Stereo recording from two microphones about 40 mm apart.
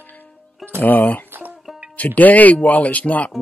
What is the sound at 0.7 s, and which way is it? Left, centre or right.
Speech, left.